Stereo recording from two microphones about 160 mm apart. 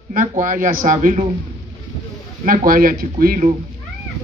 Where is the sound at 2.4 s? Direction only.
60° right (ahead or behind).